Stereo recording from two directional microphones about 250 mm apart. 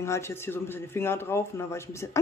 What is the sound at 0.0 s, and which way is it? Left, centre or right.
A man's voice, centre.